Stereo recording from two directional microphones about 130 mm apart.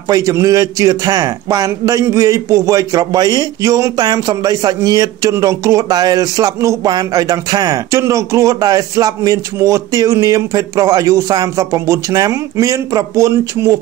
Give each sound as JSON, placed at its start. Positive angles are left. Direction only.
{"t": 0.1, "sound": "a man's voice", "side_deg": -25}